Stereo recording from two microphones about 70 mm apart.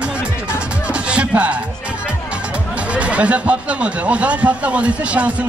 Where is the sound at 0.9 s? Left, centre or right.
Centre.